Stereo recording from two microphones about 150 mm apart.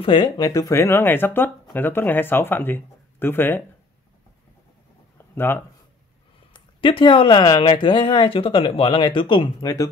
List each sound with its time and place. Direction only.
0.0 s speech: 30° left (ahead or behind); by 3.6 s 15° left (ahead or behind)
5.1 s a sound: 15° left (ahead or behind)
6.5 s speech: 35° left (ahead or behind)